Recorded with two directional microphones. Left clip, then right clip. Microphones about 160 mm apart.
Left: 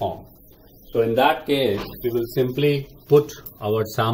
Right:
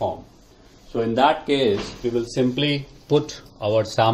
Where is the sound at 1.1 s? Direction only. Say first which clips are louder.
Right 2 dB; 15° right (ahead or behind).